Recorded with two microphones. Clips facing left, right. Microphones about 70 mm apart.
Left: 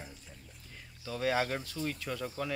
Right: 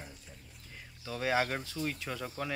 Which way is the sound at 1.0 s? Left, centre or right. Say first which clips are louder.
Even; right.